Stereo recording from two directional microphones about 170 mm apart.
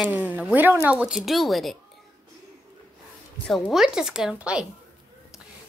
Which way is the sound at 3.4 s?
Centre (ahead or behind).